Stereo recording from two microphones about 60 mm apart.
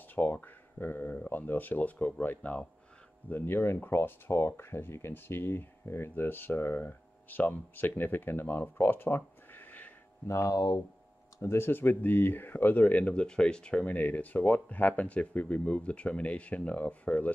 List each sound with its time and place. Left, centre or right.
0.1 s a sound: left
3.3 s speech: left
10.2 s speech: left
11.4 s speech: left; by 13.8 s centre
13.8 s speech: left